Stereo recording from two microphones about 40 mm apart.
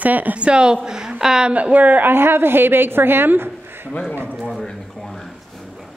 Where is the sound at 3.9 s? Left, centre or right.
Left.